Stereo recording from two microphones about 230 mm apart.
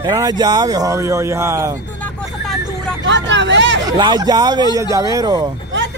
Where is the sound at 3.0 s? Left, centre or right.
Right.